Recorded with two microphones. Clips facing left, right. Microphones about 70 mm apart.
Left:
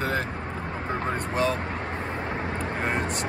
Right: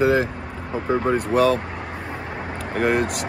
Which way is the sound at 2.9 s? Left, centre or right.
Right.